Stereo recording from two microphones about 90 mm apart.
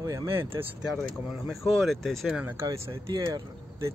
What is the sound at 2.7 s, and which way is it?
Speech, 35° right (ahead or behind).